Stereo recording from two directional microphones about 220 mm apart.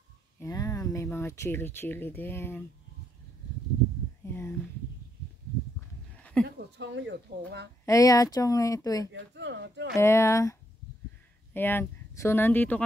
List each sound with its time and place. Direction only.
0.4 s speech: 15° left (ahead or behind)
4.2 s speech: 10° left (ahead or behind)
6.4 s speech: 50° right (ahead or behind)
7.8 s speech: 15° left (ahead or behind)
9.1 s speech: 55° right (ahead or behind)
9.9 s speech: 10° left (ahead or behind)
11.5 s speech: 10° left (ahead or behind)